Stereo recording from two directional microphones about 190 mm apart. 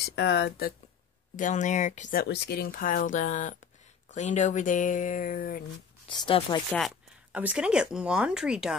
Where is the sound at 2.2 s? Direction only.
60° left (ahead or behind).